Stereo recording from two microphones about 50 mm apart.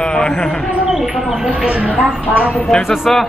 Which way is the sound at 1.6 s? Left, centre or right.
Right.